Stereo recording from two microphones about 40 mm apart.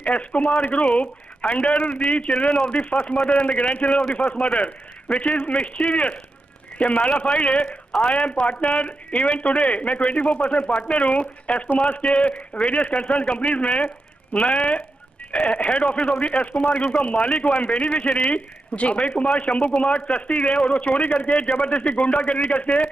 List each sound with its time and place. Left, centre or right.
0.0 s a man's voice: left